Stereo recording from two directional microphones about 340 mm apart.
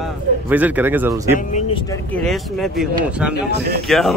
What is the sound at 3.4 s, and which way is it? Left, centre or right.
Speech, right.